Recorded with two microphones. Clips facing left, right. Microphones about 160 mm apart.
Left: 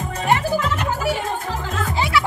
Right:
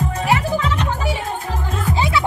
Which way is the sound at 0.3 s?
Centre (ahead or behind).